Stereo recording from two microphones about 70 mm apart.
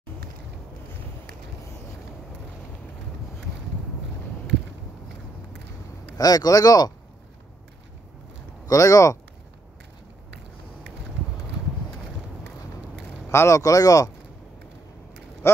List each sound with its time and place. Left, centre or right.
6.1 s speech: left
8.6 s speech: left
13.3 s speech: left
13.6 s speech: left
15.4 s speech: left